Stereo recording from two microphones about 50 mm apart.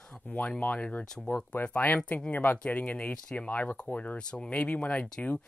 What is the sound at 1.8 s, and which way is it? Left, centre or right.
Speech, left.